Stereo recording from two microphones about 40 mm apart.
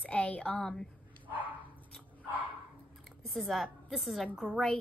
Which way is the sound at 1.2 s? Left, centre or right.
Right.